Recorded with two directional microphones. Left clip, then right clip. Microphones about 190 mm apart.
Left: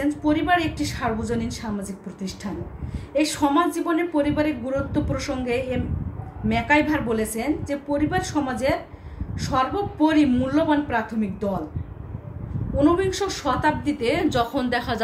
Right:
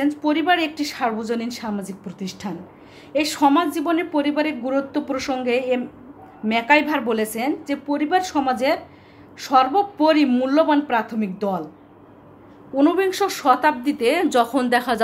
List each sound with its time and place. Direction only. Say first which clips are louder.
0.0 s a woman's voice: right 2 dB; 50° right (ahead or behind)
12.7 s a woman's voice: right 2 dB; 55° right (ahead or behind)